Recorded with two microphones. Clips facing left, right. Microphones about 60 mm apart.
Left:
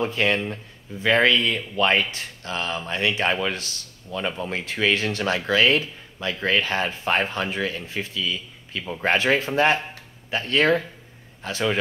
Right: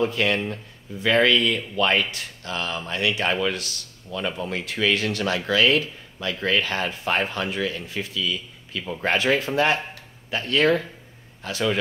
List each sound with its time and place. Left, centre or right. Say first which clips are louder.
0.0 s speech: even; left